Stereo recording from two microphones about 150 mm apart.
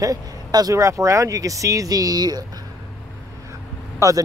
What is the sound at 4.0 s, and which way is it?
Speech, 20° right (ahead or behind).